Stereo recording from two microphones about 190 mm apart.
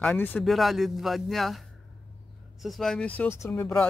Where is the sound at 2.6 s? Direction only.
Centre (ahead or behind).